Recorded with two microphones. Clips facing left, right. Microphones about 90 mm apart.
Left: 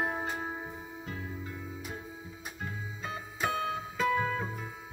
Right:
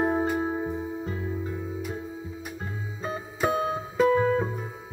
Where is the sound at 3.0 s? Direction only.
40° right (ahead or behind).